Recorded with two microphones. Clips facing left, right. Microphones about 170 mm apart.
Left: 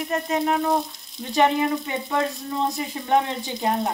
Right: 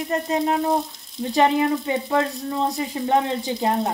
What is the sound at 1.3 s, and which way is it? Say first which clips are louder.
Frying: right 1 dB; 30° right (ahead or behind).